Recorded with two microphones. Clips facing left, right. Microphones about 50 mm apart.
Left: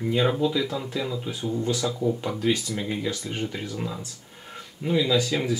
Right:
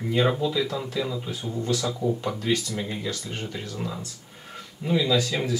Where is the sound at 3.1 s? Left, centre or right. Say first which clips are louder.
Left 3 dB; centre.